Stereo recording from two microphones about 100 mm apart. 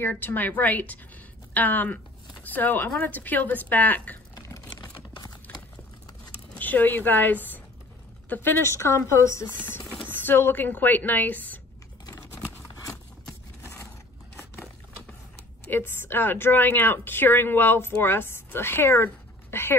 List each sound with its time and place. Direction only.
0.1 s a woman's voice: 20° left (ahead or behind)
5.5 s a sound: 15° left (ahead or behind)
6.6 s speech: 20° left (ahead or behind)
12.4 s a sound: 20° left (ahead or behind)
15.7 s a woman's voice: 20° left (ahead or behind)
19.5 s dog: 25° left (ahead or behind)